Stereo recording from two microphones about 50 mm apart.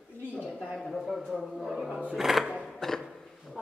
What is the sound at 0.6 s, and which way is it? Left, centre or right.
Speech, centre.